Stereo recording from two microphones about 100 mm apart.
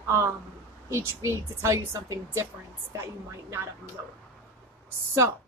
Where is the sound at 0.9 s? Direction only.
30° right (ahead or behind).